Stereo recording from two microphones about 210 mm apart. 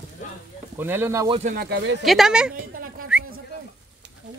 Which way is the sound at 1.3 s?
35° right (ahead or behind).